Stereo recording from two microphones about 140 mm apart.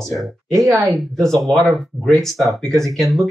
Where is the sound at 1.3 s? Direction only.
Centre (ahead or behind).